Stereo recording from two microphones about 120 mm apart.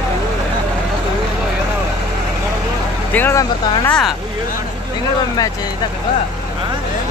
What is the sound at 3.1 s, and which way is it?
Speech, 15° left (ahead or behind).